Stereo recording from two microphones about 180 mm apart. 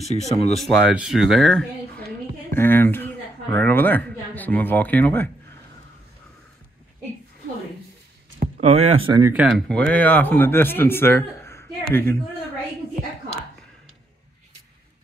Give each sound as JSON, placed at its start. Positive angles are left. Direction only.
{"t": 0.0, "sound": "speech", "side_deg": 35}
{"t": 0.6, "sound": "speech", "side_deg": 0}
{"t": 8.5, "sound": "speech", "side_deg": -35}
{"t": 9.2, "sound": "speech", "side_deg": -5}
{"t": 9.7, "sound": "speech", "side_deg": 5}